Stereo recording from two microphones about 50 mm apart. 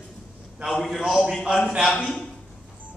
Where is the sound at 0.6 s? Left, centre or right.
Centre.